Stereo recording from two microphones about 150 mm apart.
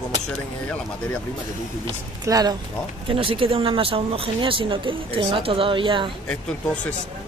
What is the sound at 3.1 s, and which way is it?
Speech, 35° right (ahead or behind).